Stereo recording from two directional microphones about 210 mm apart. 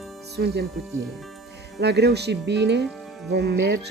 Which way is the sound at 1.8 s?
50° right (ahead or behind).